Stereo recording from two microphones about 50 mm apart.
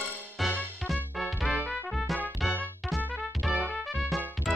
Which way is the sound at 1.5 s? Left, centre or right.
Right.